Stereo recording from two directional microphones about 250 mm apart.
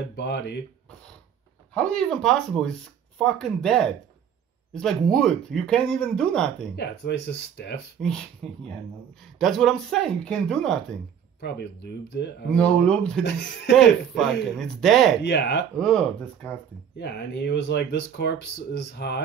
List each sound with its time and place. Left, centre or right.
0.1 s speech: left
1.7 s speech: centre
6.8 s speech: left
8.4 s speech: centre
11.4 s speech: left
12.4 s speech: centre
13.2 s speech: left
13.7 s speech: centre
15.2 s speech: left
15.7 s speech: centre
17.0 s speech: left